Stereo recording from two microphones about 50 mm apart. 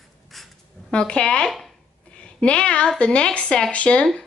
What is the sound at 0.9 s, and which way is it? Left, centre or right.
A woman's voice, centre.